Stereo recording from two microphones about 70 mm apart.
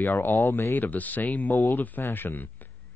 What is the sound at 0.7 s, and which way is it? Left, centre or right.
Speech, left.